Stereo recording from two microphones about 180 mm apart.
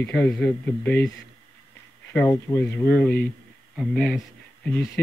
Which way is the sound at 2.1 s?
10° left (ahead or behind).